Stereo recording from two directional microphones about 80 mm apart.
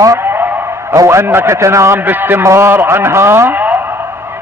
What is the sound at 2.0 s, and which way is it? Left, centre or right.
Speech, right.